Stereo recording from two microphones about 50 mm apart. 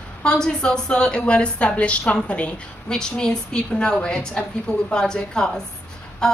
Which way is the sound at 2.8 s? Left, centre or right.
Centre.